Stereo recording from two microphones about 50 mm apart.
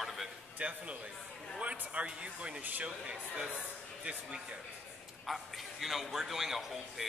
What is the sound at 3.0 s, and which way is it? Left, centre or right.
Speech, centre.